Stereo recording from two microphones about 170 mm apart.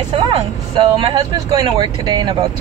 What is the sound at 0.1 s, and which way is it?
Speech, 25° right (ahead or behind).